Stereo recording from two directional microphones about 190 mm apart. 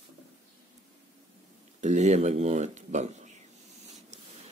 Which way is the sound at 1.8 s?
35° right (ahead or behind).